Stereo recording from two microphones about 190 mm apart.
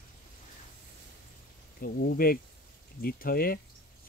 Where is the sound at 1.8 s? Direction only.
55° left (ahead or behind).